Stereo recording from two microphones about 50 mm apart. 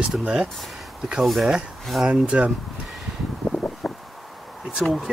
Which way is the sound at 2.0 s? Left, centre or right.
Centre.